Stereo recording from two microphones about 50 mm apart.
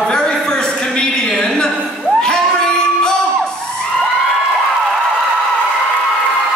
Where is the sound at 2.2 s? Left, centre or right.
Centre.